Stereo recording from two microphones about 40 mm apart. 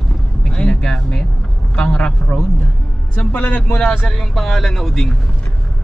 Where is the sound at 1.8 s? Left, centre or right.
Left.